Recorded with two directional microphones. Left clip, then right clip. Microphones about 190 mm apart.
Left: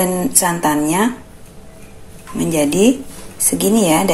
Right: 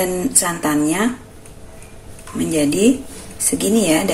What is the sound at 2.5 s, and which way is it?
A woman's voice, 15° left (ahead or behind).